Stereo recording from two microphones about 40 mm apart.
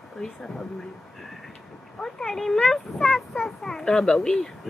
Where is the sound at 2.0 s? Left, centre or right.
Centre.